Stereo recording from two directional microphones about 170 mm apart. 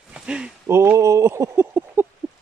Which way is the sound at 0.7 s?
15° right (ahead or behind).